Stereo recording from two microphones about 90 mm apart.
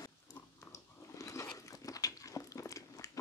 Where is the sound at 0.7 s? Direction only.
35° left (ahead or behind).